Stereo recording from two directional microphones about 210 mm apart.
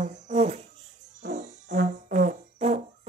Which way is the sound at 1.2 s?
35° right (ahead or behind).